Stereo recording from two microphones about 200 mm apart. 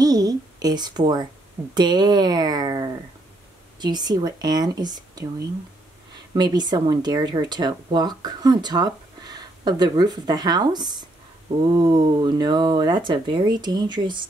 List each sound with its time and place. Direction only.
0.0 s a sound: 20° right (ahead or behind)
1.7 s speech: 20° right (ahead or behind)
6.3 s speech: 20° right (ahead or behind)